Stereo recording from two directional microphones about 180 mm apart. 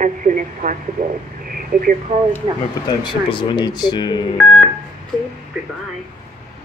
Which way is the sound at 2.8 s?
25° left (ahead or behind).